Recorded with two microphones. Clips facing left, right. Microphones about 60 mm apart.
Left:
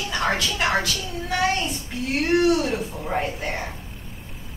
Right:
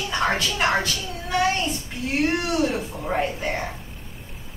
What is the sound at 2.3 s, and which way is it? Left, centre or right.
A woman's voice, centre.